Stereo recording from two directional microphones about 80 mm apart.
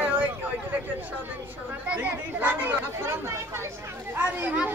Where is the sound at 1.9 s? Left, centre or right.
Centre.